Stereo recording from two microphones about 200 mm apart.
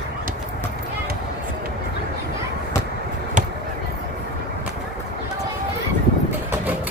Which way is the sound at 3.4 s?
40° right (ahead or behind).